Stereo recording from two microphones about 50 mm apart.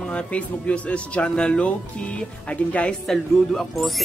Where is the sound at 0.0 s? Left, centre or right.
Left.